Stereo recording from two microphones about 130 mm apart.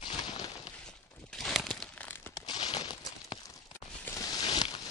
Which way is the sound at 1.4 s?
5° left (ahead or behind).